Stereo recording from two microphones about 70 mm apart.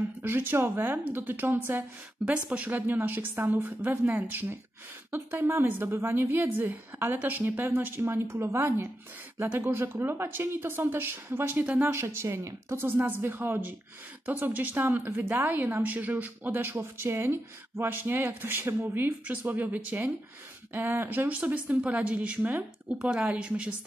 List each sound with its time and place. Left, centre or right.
0.2 s speech: right
2.2 s speech: centre
2.7 s a woman's voice: right
11.9 s a woman's voice: right
12.7 s speech: right